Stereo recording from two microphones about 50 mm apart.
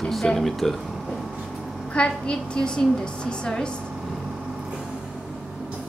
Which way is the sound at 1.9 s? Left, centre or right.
Left.